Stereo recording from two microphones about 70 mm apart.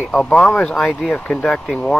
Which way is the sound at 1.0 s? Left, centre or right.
Centre.